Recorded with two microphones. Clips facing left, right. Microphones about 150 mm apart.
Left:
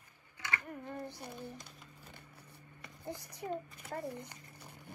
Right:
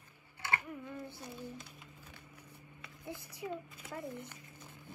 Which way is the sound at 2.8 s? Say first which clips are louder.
Left 2 dB; 20° left (ahead or behind).